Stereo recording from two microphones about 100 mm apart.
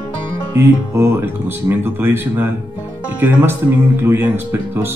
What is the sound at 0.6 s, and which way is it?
Speech, 25° right (ahead or behind).